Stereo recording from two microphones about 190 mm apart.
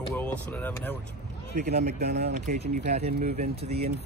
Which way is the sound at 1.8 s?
55° right (ahead or behind).